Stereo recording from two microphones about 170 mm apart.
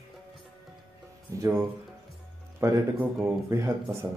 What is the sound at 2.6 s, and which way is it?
Speech, 15° right (ahead or behind).